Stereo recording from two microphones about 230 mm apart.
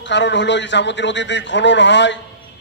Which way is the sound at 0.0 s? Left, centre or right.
Left.